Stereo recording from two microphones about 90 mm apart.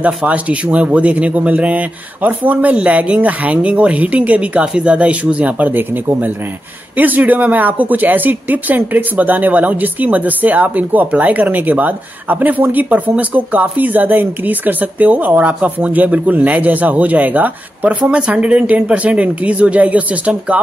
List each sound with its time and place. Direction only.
0.0 s a man's voice: 15° right (ahead or behind)
7.0 s speech: 20° right (ahead or behind)